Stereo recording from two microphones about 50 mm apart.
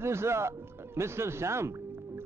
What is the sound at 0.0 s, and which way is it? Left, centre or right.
A man's voice, right.